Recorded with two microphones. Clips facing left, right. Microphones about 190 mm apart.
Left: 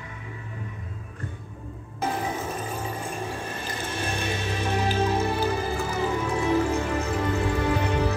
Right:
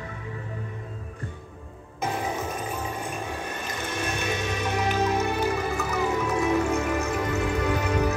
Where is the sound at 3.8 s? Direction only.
30° left (ahead or behind).